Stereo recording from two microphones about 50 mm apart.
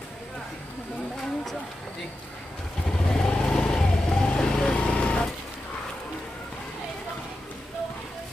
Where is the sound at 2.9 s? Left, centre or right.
Centre.